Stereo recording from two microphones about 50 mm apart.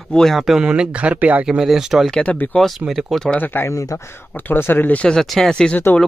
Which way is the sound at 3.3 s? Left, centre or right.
Left.